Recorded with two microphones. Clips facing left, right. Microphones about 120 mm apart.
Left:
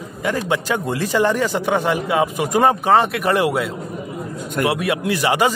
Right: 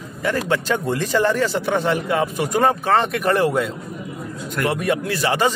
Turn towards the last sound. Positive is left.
turn(degrees=15)  # may be behind; listen again after turning